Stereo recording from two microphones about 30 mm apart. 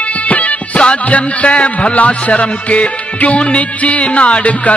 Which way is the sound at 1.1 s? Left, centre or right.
Left.